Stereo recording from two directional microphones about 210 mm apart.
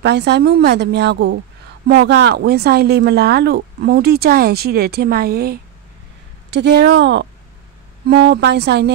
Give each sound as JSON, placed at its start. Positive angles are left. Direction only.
{"t": 0.0, "sound": "speech", "side_deg": -55}